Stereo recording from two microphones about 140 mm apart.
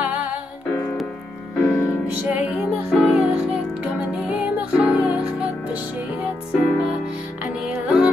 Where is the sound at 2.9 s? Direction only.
Centre (ahead or behind).